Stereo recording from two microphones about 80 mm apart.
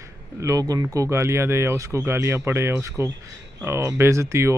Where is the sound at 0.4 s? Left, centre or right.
Right.